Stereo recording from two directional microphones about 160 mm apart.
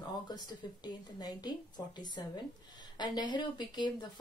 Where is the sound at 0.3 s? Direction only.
25° left (ahead or behind).